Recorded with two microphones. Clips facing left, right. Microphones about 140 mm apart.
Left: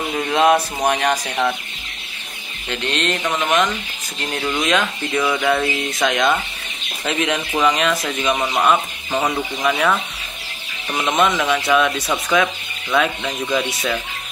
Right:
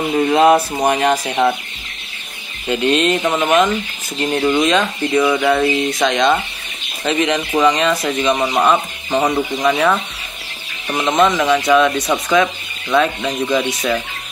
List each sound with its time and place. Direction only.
0.1 s speech: 10° right (ahead or behind)
2.7 s speech: 10° right (ahead or behind)
11.5 s speech: centre (ahead or behind)